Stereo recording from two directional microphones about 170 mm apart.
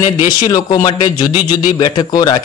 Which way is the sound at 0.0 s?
25° left (ahead or behind).